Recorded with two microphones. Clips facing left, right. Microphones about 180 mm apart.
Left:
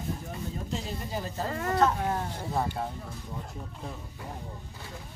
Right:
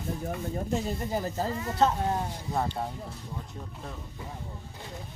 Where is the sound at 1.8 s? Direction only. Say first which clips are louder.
Right 1 dB; 25° right (ahead or behind).